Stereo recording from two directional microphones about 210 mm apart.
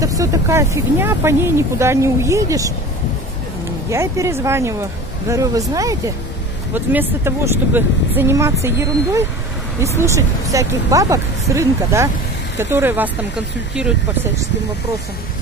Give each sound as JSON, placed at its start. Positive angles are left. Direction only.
{"t": 0.0, "sound": "speech", "side_deg": -15}
{"t": 3.9, "sound": "speech", "side_deg": -15}